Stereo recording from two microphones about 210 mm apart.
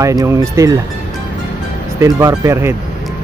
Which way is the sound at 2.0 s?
15° right (ahead or behind).